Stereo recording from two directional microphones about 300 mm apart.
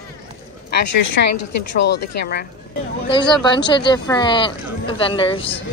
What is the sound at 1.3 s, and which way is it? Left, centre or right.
Speech, left.